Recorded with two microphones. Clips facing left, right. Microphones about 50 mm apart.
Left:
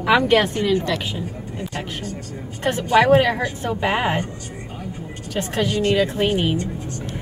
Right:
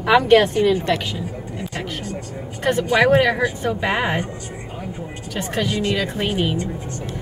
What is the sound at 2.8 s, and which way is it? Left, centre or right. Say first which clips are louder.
Speech: left 2 dB; centre.